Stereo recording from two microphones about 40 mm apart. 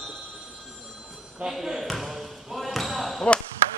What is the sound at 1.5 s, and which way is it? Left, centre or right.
Basketball bounce, centre.